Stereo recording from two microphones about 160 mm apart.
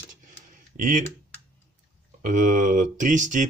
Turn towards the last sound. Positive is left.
turn(degrees=-50)  # may be behind; listen again after turning